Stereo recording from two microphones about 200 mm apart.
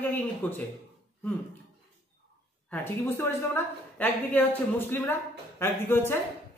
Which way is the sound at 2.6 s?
10° left (ahead or behind).